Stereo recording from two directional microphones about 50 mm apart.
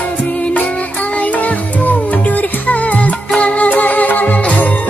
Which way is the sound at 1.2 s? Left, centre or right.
Left.